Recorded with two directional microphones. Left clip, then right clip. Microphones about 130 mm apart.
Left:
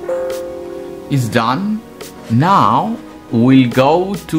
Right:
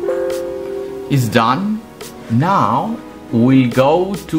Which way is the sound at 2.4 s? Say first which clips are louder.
Left 3 dB; 25° left (ahead or behind).